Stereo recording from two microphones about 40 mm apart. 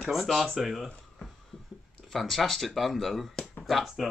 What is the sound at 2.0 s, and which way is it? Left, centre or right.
Speech, centre.